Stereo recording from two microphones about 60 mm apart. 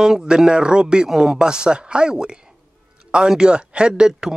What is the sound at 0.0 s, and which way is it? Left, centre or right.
Speech, centre.